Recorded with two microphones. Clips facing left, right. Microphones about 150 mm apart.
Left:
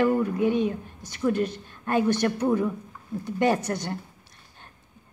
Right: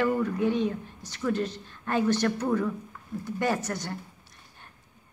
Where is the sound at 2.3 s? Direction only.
20° left (ahead or behind).